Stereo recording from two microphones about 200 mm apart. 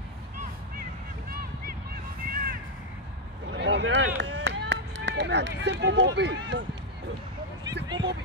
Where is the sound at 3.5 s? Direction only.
65° right (ahead or behind).